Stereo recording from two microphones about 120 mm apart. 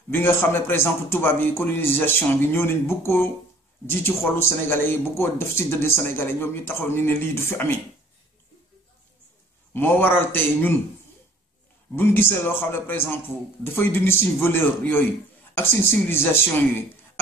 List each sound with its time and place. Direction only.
0.1 s speech: 15° left (ahead or behind)
9.8 s a man's voice: 15° left (ahead or behind)
11.9 s a man's voice: 20° left (ahead or behind)